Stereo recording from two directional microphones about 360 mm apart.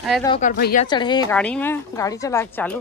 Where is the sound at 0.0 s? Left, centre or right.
Centre.